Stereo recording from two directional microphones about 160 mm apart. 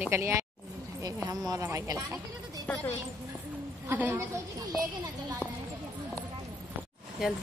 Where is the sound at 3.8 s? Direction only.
15° right (ahead or behind).